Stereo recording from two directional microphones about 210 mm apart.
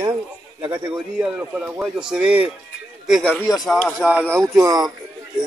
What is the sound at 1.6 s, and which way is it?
Speech, 5° right (ahead or behind).